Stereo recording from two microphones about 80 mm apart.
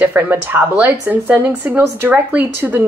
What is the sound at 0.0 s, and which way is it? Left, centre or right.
Speech, right.